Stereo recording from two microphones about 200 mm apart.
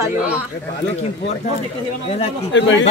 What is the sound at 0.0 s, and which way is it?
Speech, 5° right (ahead or behind).